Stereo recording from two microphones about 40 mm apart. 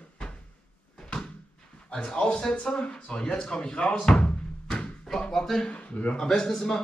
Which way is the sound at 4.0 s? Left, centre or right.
Centre.